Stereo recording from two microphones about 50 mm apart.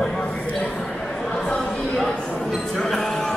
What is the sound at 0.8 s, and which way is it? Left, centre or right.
Chatter, centre.